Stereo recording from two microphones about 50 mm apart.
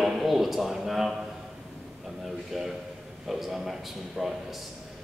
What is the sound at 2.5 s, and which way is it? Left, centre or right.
A man's voice, centre.